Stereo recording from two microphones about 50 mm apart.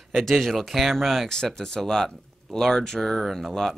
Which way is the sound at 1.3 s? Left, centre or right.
Centre.